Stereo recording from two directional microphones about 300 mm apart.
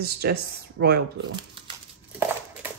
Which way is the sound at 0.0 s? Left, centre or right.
Right.